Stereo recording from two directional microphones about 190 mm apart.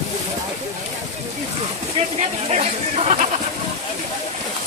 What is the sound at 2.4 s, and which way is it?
Speech, 35° right (ahead or behind).